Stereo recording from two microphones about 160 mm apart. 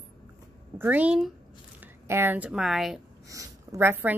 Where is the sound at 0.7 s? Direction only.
10° right (ahead or behind).